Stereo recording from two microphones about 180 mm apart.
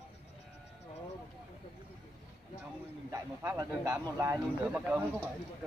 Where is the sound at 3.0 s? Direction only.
20° right (ahead or behind).